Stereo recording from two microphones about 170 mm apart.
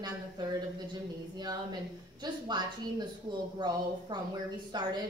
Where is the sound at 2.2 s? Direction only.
25° right (ahead or behind).